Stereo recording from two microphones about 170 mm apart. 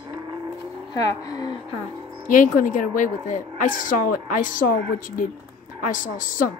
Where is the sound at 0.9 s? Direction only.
20° left (ahead or behind).